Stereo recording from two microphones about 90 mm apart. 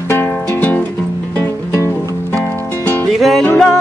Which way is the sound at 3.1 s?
Centre (ahead or behind).